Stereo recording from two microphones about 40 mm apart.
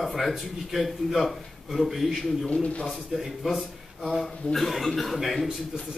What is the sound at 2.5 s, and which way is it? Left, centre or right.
Speech, left.